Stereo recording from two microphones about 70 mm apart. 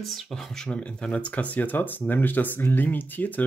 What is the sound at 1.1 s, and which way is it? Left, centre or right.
Speech, centre.